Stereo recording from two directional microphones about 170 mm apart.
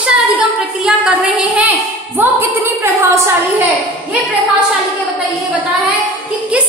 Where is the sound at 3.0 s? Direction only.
15° right (ahead or behind).